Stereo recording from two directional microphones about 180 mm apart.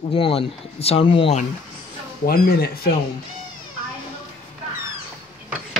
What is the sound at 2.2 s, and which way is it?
Speech, 55° left (ahead or behind).